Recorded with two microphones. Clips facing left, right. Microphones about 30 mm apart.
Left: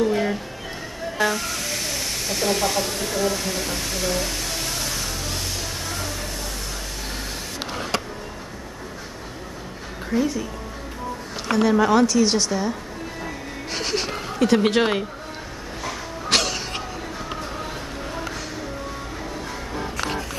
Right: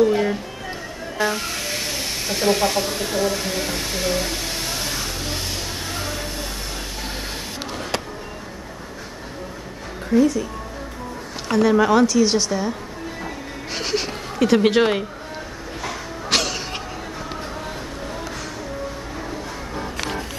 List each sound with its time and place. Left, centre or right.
0.0 s music: centre
1.4 s a sound: centre
2.9 s speech: right
3.3 s music: centre
5.9 s a sound: right
11.5 s a woman's voice: centre
13.2 s music: centre